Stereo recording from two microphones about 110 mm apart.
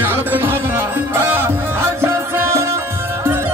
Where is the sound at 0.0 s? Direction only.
20° right (ahead or behind).